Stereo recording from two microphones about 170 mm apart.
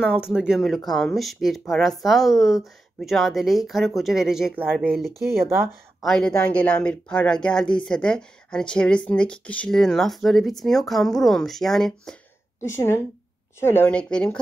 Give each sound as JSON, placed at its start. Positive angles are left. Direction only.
{"t": 0.0, "sound": "speech", "side_deg": -5}
{"t": 5.2, "sound": "speech", "side_deg": -65}
{"t": 6.0, "sound": "speech", "side_deg": 5}
{"t": 12.6, "sound": "speech", "side_deg": 15}